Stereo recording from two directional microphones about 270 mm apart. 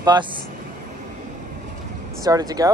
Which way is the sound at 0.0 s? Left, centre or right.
Centre.